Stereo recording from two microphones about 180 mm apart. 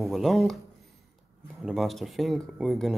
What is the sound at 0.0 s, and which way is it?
Speech, centre (ahead or behind).